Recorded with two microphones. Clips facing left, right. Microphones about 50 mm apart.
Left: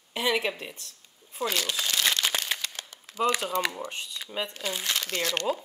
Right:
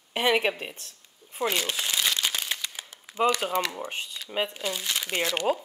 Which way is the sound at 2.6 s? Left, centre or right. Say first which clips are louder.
Even; centre.